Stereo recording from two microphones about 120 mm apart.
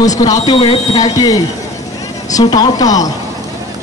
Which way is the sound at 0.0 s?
30° left (ahead or behind).